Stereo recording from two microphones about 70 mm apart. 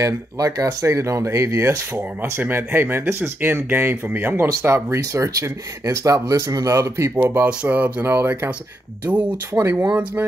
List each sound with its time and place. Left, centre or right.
0.0 s speech: right
2.4 s speech: right
4.5 s speech: right
6.6 s speech: right
9.0 s speech: right